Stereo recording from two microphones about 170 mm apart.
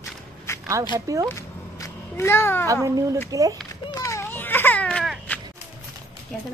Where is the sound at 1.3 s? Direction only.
15° left (ahead or behind).